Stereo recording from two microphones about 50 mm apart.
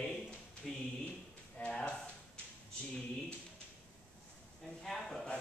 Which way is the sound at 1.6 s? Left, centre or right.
Left.